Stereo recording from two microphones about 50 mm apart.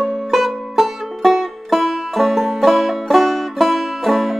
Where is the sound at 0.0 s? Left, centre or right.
Centre.